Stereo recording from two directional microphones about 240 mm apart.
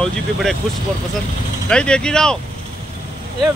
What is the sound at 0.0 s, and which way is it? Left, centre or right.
Speech, centre.